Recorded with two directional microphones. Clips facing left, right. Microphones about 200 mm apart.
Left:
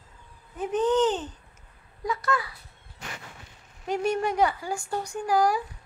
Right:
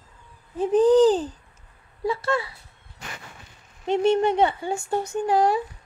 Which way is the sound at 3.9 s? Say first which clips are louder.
Right 6 dB; 25° right (ahead or behind).